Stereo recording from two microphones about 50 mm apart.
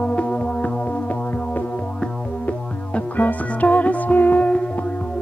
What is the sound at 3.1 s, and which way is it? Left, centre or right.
Music, left.